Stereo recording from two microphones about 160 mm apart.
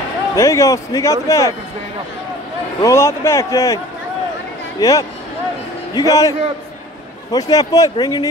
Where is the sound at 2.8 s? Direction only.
15° left (ahead or behind).